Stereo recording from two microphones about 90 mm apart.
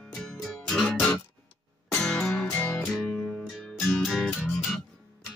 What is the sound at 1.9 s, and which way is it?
Music, 10° left (ahead or behind).